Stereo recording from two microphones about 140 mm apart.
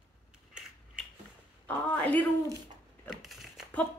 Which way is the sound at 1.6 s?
10° left (ahead or behind).